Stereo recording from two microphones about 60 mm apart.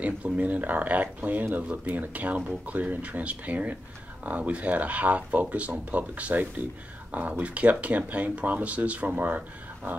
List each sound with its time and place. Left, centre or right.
0.0 s speech: right
9.9 s dog: right